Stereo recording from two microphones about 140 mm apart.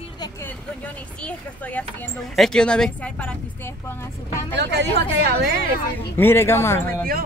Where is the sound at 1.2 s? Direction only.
10° left (ahead or behind).